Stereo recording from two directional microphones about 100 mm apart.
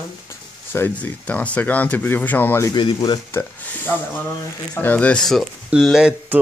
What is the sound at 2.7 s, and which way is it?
Speech, 50° left (ahead or behind).